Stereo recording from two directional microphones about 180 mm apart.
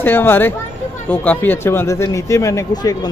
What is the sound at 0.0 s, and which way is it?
Speech, 10° left (ahead or behind).